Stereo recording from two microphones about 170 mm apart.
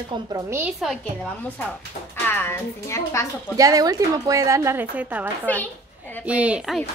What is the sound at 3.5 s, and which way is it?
A woman's voice, 20° right (ahead or behind).